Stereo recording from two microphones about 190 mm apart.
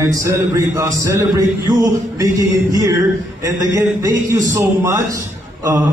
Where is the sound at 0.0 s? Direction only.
15° right (ahead or behind).